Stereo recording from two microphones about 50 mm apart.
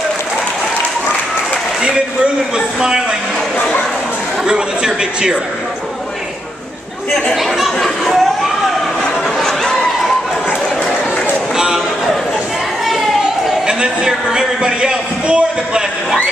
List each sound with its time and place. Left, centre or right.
2.8 s a man's voice: centre
4.5 s a man's voice: centre
7.3 s speech: centre
9.4 s a sound: centre
11.5 s a sound: centre
13.7 s a man's voice: centre